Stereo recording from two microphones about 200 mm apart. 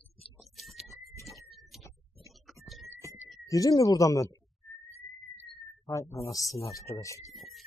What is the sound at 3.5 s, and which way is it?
Speech, 15° left (ahead or behind).